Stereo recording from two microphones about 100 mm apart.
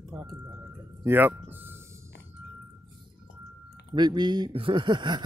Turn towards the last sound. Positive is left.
turn(degrees=-50)  # may be behind; listen again after turning